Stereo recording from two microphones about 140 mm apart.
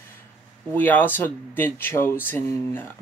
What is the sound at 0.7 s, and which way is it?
Speech, 15° left (ahead or behind).